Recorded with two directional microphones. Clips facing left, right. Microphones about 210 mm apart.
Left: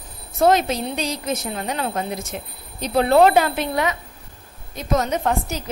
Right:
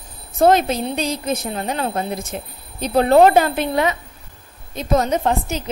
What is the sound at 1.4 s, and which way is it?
A woman's voice, 30° right (ahead or behind).